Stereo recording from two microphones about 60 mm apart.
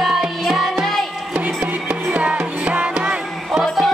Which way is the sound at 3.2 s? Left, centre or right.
Centre.